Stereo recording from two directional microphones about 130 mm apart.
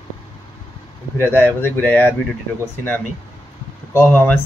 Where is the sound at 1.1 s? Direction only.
15° left (ahead or behind).